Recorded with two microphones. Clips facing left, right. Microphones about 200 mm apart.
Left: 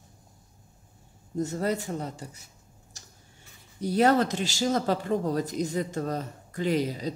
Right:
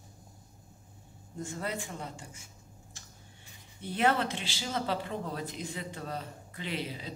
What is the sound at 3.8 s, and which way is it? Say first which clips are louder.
Speech: left 7 dB; 40° left (ahead or behind).